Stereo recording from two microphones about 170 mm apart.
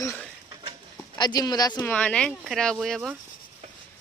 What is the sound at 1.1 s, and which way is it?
Speech, 25° left (ahead or behind).